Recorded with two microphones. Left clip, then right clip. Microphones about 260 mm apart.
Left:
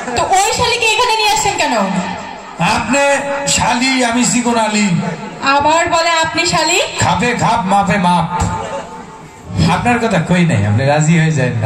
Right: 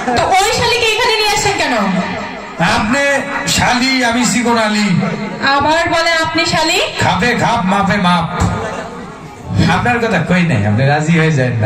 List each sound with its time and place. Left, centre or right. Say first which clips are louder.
0.1 s a sound: right 1 dB; left
2.9 s a man's voice: left 1 dB; left
9.6 s a man's voice: even; left